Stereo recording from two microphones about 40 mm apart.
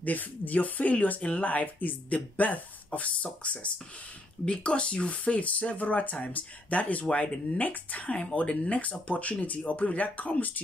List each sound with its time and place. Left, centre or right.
0.0 s speech: left
3.5 s speech: left